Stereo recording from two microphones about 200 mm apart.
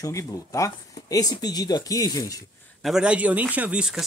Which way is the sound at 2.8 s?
5° right (ahead or behind).